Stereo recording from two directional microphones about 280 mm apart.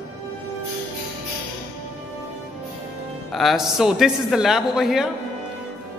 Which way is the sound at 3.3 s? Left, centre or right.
Centre.